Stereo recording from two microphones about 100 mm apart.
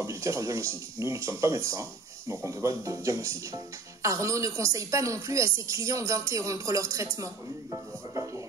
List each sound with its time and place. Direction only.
0.0 s speech: 30° right (ahead or behind)